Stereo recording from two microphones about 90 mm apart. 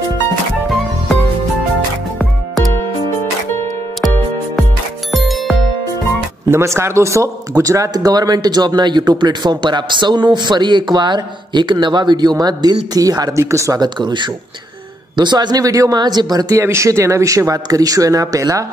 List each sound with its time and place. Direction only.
5.1 s music: centre (ahead or behind)
6.5 s speech: 30° right (ahead or behind)
13.7 s speech: 60° right (ahead or behind); by 16.0 s 40° right (ahead or behind)
16.0 s speech: 50° right (ahead or behind)
16.5 s speech: 30° right (ahead or behind)